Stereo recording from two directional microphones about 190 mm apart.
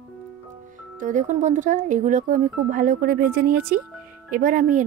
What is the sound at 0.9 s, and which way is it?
Speech, 40° right (ahead or behind).